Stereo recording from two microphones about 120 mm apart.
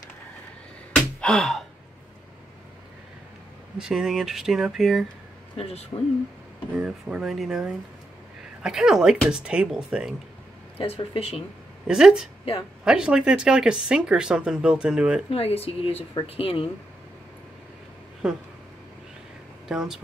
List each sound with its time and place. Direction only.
1.2 s gasp: 5° left (ahead or behind)
3.7 s speech: 5° right (ahead or behind)
5.6 s speech: 60° left (ahead or behind)
6.8 s speech: 10° right (ahead or behind)
10.8 s speech: 50° left (ahead or behind)
11.9 s speech: 5° right (ahead or behind)
15.3 s speech: 55° left (ahead or behind)
18.2 s speech: 5° right (ahead or behind)
19.7 s speech: 5° right (ahead or behind)